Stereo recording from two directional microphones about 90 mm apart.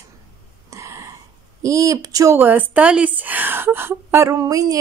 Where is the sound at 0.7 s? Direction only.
35° right (ahead or behind).